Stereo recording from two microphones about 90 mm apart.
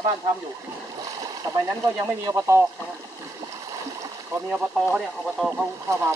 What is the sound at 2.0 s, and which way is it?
Speech, 30° right (ahead or behind).